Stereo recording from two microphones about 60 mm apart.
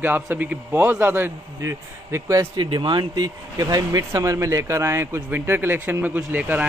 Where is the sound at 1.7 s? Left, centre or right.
Right.